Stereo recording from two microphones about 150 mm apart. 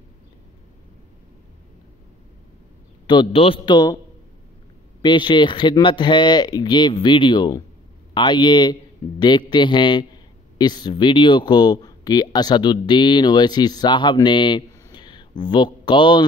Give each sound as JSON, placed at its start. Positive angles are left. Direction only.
{"t": 3.1, "sound": "speech", "side_deg": 35}
{"t": 5.0, "sound": "a man's voice", "side_deg": 30}